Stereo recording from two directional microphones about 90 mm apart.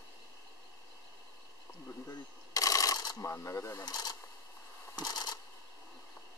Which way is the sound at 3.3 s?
35° left (ahead or behind).